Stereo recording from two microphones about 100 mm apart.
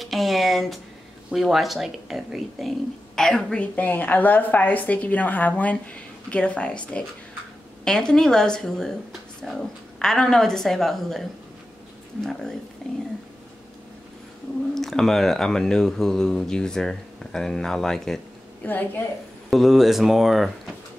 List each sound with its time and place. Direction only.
0.0 s a woman's voice: centre (ahead or behind)
14.7 s speech: 5° left (ahead or behind)
18.6 s a woman's voice: 20° left (ahead or behind)
19.5 s speech: centre (ahead or behind)